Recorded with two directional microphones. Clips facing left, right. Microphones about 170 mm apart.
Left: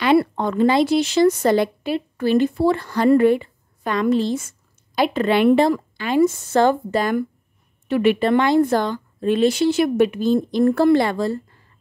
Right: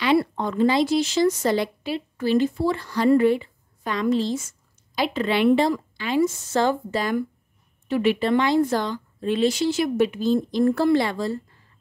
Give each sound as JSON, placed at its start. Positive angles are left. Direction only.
{"t": 0.0, "sound": "speech", "side_deg": 60}